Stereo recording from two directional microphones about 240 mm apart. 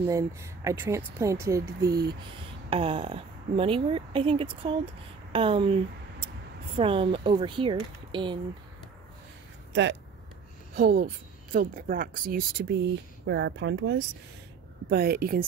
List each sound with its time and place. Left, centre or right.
0.0 s speech: centre
6.8 s speech: right
10.7 s speech: right